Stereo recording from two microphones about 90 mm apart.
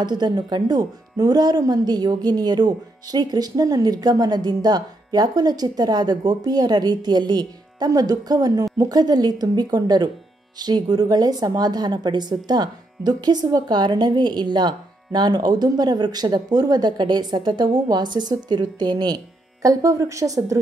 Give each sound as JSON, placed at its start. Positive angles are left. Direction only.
{"t": 0.0, "sound": "speech", "side_deg": -50}
{"t": 19.6, "sound": "a woman's voice", "side_deg": -40}